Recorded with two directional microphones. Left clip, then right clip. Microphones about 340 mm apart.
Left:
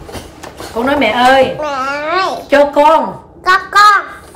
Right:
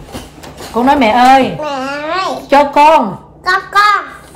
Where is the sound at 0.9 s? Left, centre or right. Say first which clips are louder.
Right 3 dB; centre.